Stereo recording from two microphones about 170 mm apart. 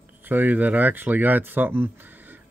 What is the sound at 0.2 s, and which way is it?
Speech, 10° right (ahead or behind).